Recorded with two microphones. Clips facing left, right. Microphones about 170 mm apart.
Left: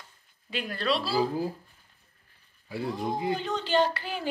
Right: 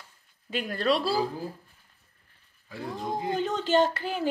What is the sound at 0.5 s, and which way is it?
Speech, 45° right (ahead or behind).